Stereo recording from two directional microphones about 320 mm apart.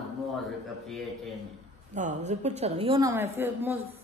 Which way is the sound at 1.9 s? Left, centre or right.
Right.